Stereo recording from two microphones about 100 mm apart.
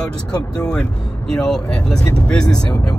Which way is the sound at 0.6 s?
10° left (ahead or behind).